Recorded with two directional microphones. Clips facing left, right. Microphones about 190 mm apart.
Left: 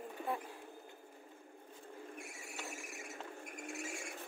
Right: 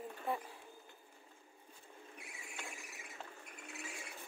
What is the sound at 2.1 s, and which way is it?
Squeal, 45° left (ahead or behind).